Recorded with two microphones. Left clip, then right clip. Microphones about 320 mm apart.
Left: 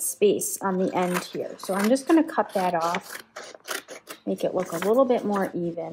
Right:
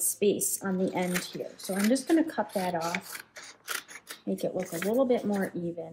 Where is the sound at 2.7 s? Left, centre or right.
Centre.